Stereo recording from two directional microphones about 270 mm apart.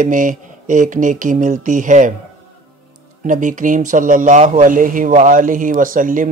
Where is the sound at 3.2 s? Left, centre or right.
Right.